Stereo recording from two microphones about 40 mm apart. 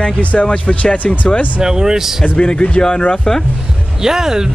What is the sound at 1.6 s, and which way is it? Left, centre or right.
Speech, centre.